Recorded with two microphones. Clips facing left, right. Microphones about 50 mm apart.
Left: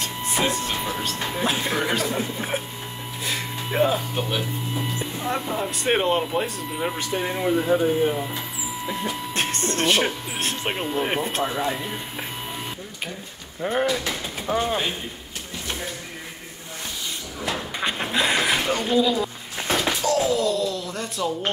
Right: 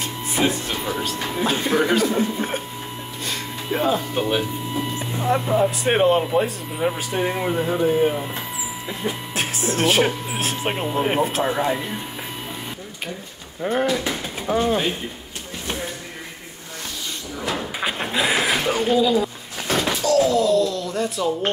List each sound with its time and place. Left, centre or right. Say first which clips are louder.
0.0 s music: right 2 dB; centre
0.9 s speech: right 2 dB; centre
3.3 s a sound: right 1 dB; centre
5.3 s speech: right 9 dB; centre
9.3 s speech: even; centre
11.5 s speech: right 4 dB; centre
13.6 s speech: right 2 dB; centre
17.7 s a sound: left 1 dB; centre
19.8 s slam: right 5 dB; left
20.2 s speech: right 4 dB; centre